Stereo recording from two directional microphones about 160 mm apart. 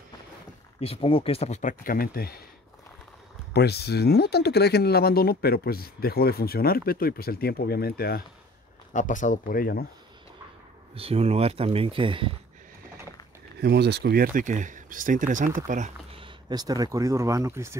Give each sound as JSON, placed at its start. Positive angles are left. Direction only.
{"t": 0.7, "sound": "speech", "side_deg": 35}
{"t": 3.5, "sound": "speech", "side_deg": 90}
{"t": 8.9, "sound": "speech", "side_deg": 55}
{"t": 11.0, "sound": "speech", "side_deg": -40}
{"t": 13.6, "sound": "speech", "side_deg": -90}
{"t": 16.2, "sound": "speech", "side_deg": -30}